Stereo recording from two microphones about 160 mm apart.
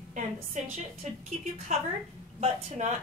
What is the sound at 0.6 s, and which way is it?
A woman's voice, 50° right (ahead or behind).